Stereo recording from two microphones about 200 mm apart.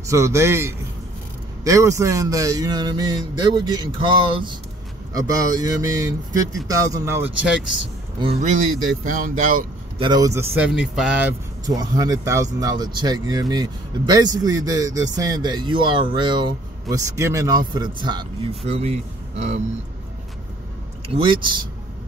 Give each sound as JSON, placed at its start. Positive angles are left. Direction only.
{"t": 0.1, "sound": "speech", "side_deg": -15}
{"t": 8.2, "sound": "speech", "side_deg": -30}
{"t": 9.9, "sound": "speech", "side_deg": -20}
{"t": 11.6, "sound": "speech", "side_deg": -20}
{"t": 18.7, "sound": "speech", "side_deg": -35}
{"t": 21.2, "sound": "speech", "side_deg": -25}